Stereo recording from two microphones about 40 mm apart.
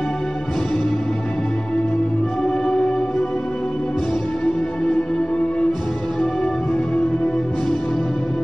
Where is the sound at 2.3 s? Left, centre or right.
Centre.